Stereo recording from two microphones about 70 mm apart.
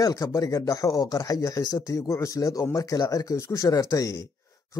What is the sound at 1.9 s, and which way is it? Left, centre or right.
Speech, left.